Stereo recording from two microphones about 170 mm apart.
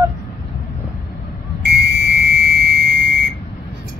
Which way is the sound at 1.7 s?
75° right (ahead or behind).